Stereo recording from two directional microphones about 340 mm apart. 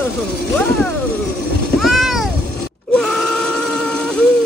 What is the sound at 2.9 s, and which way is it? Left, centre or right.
Wail, centre.